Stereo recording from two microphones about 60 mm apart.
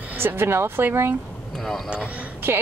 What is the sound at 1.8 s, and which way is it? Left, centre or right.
Speech, right.